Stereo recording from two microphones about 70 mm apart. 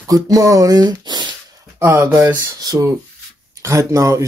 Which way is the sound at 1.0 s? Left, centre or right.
Right.